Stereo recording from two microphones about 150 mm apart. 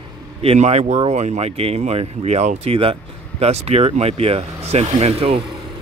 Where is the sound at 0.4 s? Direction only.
45° right (ahead or behind).